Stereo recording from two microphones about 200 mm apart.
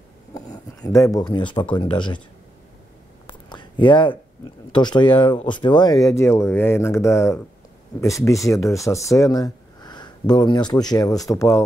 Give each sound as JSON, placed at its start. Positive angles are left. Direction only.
{"t": 0.3, "sound": "speech", "side_deg": 20}
{"t": 3.3, "sound": "a sound", "side_deg": 25}
{"t": 4.7, "sound": "speech", "side_deg": 20}